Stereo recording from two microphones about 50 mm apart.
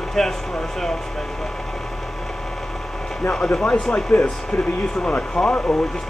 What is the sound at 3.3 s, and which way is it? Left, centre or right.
Speech, centre.